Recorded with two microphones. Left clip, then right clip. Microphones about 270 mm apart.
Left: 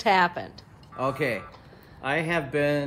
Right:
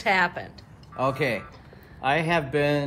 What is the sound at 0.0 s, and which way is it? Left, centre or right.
Speech, centre.